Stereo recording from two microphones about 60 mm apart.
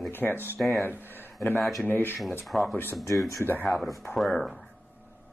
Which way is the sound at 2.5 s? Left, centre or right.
Centre.